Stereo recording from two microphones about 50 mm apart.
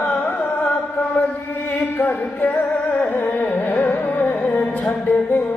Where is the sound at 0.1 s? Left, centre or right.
Left.